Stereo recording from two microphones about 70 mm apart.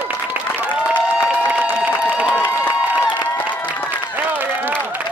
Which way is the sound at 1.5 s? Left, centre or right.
Right.